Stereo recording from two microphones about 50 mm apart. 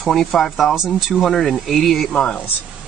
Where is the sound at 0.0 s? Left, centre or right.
Centre.